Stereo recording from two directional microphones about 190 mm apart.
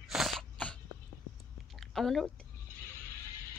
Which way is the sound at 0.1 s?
Centre (ahead or behind).